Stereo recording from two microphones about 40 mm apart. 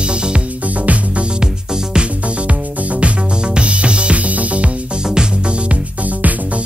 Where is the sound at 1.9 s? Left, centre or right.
Right.